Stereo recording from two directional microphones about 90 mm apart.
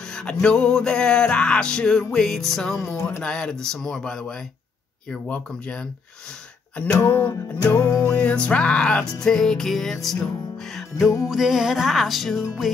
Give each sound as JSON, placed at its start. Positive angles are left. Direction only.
{"t": 0.1, "sound": "music", "side_deg": 10}
{"t": 3.0, "sound": "music", "side_deg": 25}
{"t": 3.3, "sound": "music", "side_deg": 10}
{"t": 7.0, "sound": "music", "side_deg": 20}
{"t": 7.6, "sound": "music", "side_deg": 35}
{"t": 8.0, "sound": "music", "side_deg": 15}